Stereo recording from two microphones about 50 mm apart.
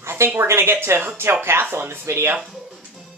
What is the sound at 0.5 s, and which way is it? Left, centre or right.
Speech, right.